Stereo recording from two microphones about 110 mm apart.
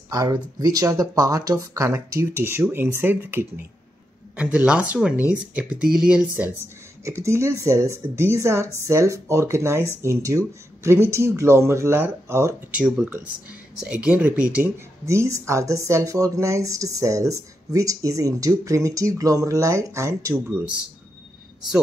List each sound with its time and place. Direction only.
0.1 s speech: 35° right (ahead or behind); by 6.6 s 15° right (ahead or behind)
7.1 s speech: 25° right (ahead or behind)
12.7 s speech: 10° right (ahead or behind)
15.0 s speech: 25° right (ahead or behind)